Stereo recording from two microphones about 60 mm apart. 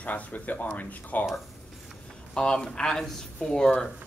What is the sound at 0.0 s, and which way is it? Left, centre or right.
A man's voice, left.